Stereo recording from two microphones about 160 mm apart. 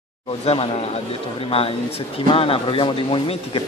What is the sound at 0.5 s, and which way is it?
Speech, 40° left (ahead or behind).